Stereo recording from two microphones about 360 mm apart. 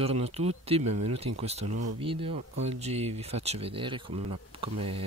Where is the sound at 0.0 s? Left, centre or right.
Centre.